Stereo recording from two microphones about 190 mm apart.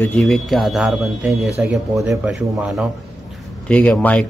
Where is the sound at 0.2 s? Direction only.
Centre (ahead or behind).